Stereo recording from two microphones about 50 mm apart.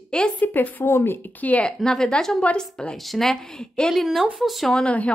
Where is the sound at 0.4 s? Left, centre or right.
Left.